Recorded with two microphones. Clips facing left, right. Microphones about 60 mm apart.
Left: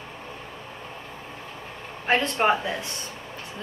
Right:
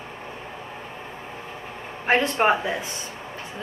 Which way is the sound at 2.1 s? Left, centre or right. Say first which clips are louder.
Right 2 dB; centre.